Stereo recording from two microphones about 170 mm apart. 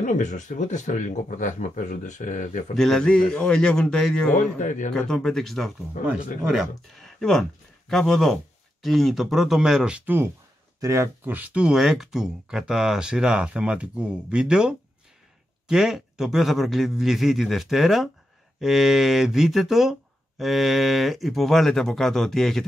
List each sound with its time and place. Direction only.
0.0 s speech: 45° left (ahead or behind)
2.7 s speech: centre (ahead or behind)
4.6 s speech: 45° left (ahead or behind)
4.9 s speech: 5° left (ahead or behind)
6.0 s speech: 50° left (ahead or behind)
6.4 s speech: centre (ahead or behind)